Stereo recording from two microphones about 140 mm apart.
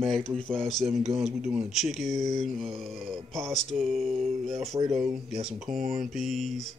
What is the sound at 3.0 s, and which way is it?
Speech, 40° right (ahead or behind).